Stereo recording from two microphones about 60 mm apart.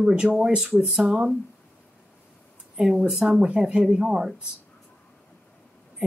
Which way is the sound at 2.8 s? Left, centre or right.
Centre.